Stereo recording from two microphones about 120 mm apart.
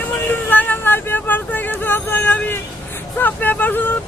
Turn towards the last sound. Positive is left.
turn(degrees=15)  # may be behind; listen again after turning